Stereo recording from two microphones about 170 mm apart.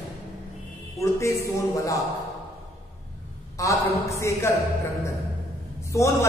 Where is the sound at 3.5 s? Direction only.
20° left (ahead or behind).